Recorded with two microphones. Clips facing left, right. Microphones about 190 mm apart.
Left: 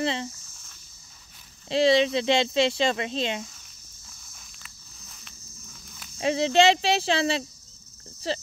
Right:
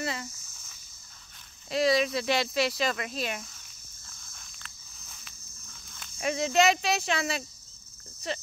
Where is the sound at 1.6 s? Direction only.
25° left (ahead or behind).